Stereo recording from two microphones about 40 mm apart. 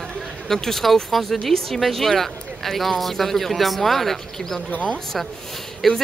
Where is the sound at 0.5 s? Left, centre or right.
Centre.